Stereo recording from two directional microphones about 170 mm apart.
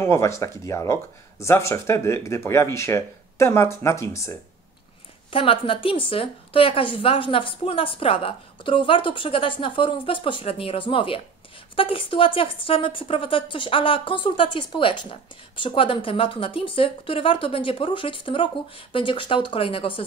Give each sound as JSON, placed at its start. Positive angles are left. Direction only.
{"t": 0.0, "sound": "speech", "side_deg": 15}
{"t": 5.3, "sound": "a woman's voice", "side_deg": 30}